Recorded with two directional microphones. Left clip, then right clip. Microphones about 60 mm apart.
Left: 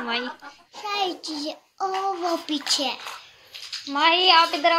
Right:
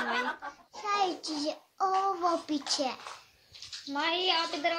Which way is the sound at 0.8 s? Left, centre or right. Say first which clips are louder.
Left 3 dB; right.